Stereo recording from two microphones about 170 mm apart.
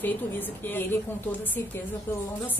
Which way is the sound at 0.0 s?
10° left (ahead or behind).